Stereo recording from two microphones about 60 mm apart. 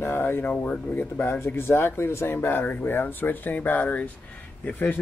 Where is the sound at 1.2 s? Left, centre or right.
Left.